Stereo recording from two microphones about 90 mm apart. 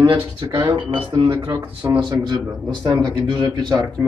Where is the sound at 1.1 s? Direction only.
55° right (ahead or behind).